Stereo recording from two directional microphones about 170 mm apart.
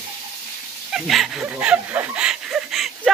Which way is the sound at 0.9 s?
Centre (ahead or behind).